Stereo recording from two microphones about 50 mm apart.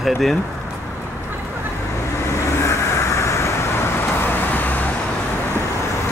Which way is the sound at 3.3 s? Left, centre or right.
Left.